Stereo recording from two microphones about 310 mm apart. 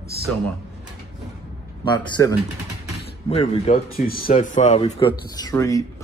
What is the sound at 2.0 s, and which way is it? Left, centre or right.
A man's voice, centre.